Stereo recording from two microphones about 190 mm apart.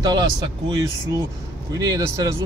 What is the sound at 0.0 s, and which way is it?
Speech, 20° right (ahead or behind).